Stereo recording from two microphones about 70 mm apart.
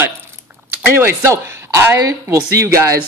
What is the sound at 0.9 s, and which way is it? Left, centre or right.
Speech, right.